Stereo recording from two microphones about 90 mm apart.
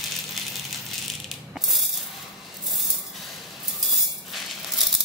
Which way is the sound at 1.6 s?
Centre (ahead or behind).